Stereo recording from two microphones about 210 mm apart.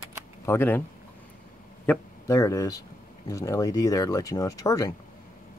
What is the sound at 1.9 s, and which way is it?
Speech, 15° left (ahead or behind).